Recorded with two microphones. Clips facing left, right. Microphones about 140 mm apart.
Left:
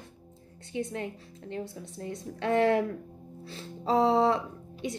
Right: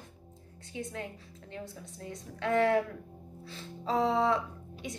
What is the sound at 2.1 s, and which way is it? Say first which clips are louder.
A woman's voice: left 3 dB; 25° left (ahead or behind).